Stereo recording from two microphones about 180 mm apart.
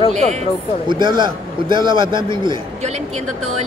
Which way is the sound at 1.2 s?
25° right (ahead or behind).